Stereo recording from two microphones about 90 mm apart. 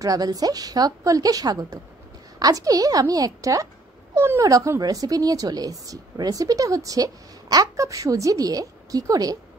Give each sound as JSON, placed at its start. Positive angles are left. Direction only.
{"t": 0.0, "sound": "a woman's voice", "side_deg": -40}
{"t": 4.1, "sound": "speech", "side_deg": -30}
{"t": 4.5, "sound": "speech", "side_deg": -40}